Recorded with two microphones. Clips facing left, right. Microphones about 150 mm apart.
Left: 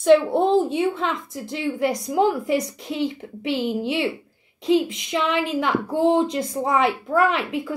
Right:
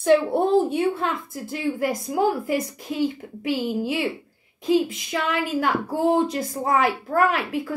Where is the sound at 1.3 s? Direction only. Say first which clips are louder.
Even; 5° right (ahead or behind).